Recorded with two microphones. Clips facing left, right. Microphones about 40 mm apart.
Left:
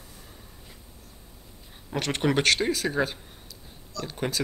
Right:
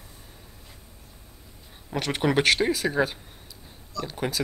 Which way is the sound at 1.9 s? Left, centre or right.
Centre.